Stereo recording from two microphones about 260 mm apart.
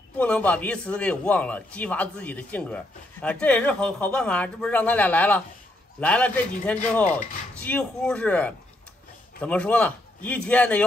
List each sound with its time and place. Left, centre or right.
0.2 s a man's voice: centre